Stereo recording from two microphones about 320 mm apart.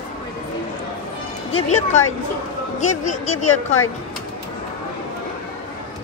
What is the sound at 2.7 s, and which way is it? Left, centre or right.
Speech, left.